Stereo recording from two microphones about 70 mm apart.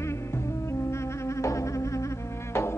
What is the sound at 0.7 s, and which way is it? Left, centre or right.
Insect, left.